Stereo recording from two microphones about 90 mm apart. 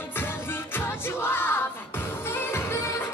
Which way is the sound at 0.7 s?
25° left (ahead or behind).